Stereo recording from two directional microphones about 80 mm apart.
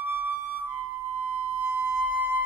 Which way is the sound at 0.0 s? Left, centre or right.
Right.